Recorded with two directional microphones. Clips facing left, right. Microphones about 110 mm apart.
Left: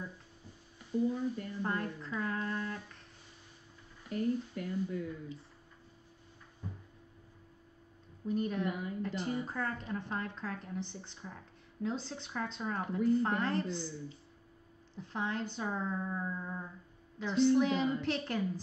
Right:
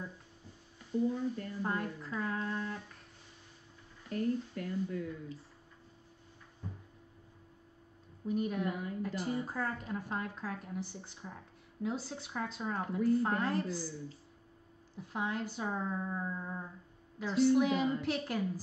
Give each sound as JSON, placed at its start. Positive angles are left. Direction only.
{"t": 0.9, "sound": "speech", "side_deg": 10}
{"t": 1.6, "sound": "a woman's voice", "side_deg": -10}
{"t": 4.1, "sound": "speech", "side_deg": 15}
{"t": 8.3, "sound": "a woman's voice", "side_deg": -10}
{"t": 15.0, "sound": "a woman's voice", "side_deg": -5}